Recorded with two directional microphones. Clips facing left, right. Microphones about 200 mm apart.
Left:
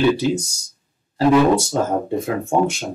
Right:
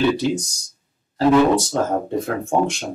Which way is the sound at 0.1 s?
5° left (ahead or behind).